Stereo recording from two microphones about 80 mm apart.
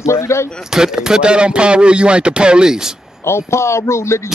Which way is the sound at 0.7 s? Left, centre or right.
Centre.